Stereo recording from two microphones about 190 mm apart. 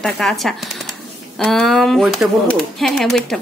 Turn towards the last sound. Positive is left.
turn(degrees=0)  # may be behind; listen again after turning